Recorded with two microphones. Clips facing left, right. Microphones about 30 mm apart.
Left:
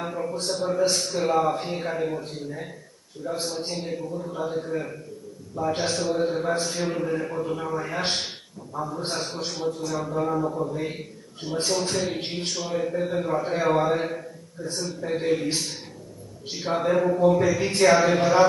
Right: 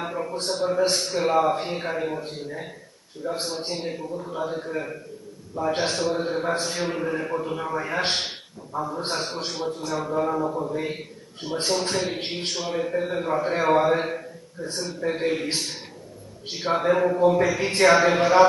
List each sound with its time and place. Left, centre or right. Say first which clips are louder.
0.0 s a sound: even; centre
0.3 s a man's voice: right 2 dB; centre
16.4 s a man's voice: right 2 dB; right